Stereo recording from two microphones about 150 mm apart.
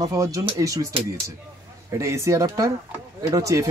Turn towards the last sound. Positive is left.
turn(degrees=-20)  # may be behind; listen again after turning